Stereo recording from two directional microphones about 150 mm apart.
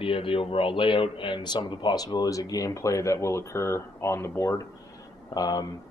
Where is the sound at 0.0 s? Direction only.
35° left (ahead or behind).